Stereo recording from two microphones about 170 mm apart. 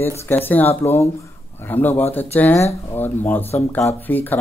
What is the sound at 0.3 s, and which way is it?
Speech, 10° left (ahead or behind).